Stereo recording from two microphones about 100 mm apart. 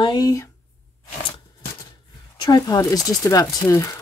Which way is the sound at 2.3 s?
40° left (ahead or behind).